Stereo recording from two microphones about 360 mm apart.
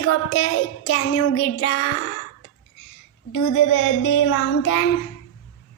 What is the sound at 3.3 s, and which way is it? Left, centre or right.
A woman's voice, left.